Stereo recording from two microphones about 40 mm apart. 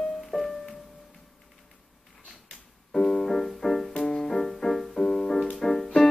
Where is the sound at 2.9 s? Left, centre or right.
Centre.